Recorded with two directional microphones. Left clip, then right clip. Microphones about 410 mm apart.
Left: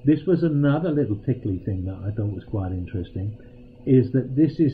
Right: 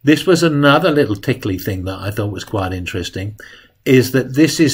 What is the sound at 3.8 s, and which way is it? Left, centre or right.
Speech, centre.